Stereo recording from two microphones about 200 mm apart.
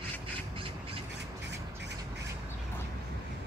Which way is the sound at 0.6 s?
25° right (ahead or behind).